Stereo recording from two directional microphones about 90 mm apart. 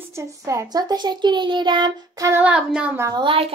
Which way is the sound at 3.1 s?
80° right.